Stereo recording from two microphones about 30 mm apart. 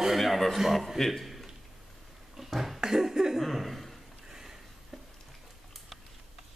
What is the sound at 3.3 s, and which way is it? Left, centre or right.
Chuckle, centre.